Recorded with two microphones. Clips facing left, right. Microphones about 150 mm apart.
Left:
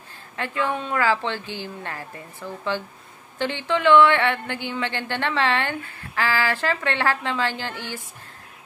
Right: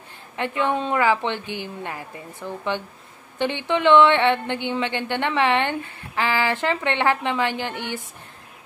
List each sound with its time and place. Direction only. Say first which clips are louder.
0.4 s speech: right 3 dB; 20° right (ahead or behind)